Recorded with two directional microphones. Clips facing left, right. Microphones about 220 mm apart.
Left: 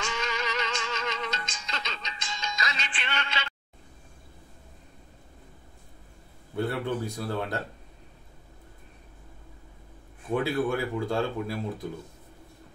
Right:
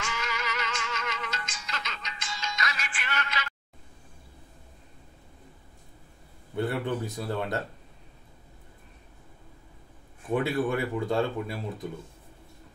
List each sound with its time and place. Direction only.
0.0 s music: 30° left (ahead or behind)
6.5 s speech: centre (ahead or behind)
10.3 s speech: centre (ahead or behind)